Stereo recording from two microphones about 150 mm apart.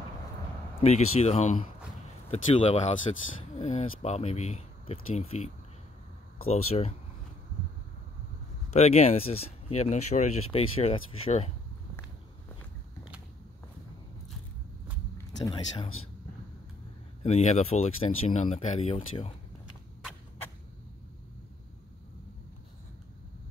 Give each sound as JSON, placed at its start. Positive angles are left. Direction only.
{"t": 0.7, "sound": "speech", "side_deg": 45}
{"t": 8.7, "sound": "speech", "side_deg": 45}
{"t": 17.2, "sound": "speech", "side_deg": 45}